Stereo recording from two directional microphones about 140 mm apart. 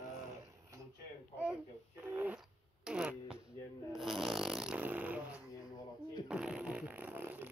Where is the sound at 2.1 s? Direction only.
10° right (ahead or behind).